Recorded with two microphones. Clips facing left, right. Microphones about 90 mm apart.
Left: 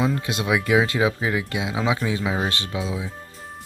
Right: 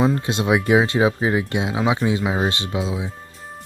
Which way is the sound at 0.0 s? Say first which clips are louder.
Right 4 dB; 30° right (ahead or behind).